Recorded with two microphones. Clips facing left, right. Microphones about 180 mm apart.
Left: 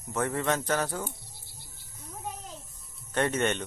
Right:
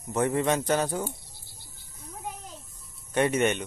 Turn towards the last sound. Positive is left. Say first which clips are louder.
# right 3 dB
turn(degrees=-10)  # may be behind; listen again after turning